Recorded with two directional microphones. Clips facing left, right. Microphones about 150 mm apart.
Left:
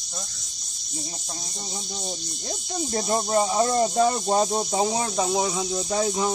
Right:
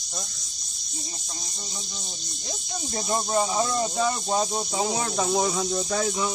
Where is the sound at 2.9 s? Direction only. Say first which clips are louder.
Left 2 dB; 35° left (ahead or behind).